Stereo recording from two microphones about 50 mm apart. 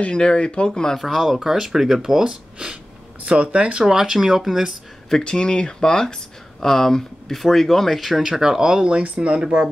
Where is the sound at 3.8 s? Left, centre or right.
Centre.